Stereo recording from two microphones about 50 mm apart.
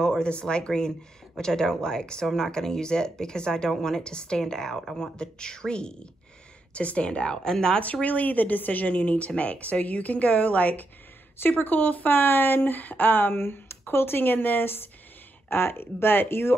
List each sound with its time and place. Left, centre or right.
0.0 s speech: centre
7.8 s speech: left
11.3 s speech: left